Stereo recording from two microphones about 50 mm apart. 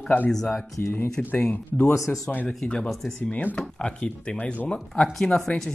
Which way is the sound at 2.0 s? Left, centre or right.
Centre.